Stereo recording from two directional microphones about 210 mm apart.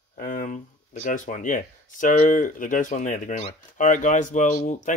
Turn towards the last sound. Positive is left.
turn(degrees=35)  # may be behind; listen again after turning